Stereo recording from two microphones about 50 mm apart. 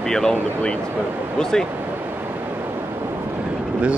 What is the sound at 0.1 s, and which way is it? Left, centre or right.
Speech, centre.